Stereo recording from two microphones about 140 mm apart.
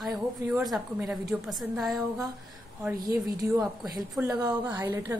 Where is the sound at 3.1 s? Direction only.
25° right (ahead or behind).